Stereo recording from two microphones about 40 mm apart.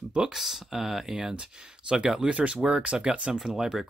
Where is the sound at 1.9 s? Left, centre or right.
Centre.